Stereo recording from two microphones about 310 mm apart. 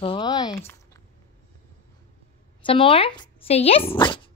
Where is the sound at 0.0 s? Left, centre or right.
Centre.